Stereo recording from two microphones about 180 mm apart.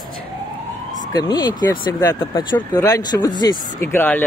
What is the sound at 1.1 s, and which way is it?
Speech, 20° left (ahead or behind).